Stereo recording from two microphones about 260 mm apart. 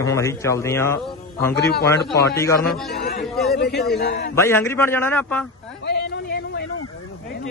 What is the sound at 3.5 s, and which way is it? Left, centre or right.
Speech, left.